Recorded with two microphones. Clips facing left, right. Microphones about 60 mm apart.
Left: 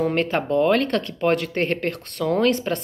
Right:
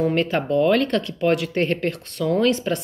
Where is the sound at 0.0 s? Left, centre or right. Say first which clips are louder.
Right 1 dB; left.